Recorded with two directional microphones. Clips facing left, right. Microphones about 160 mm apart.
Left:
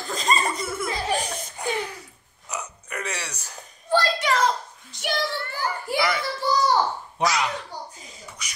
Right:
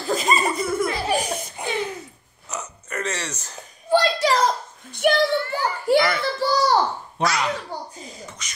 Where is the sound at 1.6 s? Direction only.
25° right (ahead or behind).